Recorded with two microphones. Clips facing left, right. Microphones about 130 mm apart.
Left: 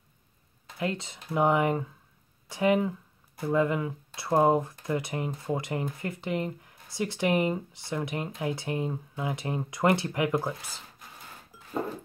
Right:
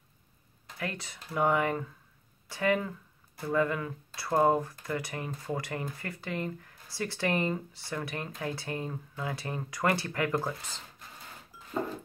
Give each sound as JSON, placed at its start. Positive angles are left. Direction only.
{"t": 0.7, "sound": "speech", "side_deg": 20}